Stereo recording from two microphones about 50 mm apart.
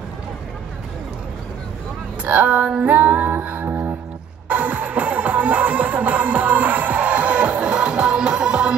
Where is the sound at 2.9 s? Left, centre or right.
Right.